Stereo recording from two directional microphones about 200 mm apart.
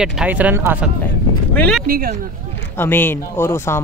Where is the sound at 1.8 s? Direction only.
45° right (ahead or behind).